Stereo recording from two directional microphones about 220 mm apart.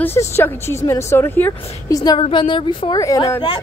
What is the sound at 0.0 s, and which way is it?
A woman's voice, 10° left (ahead or behind).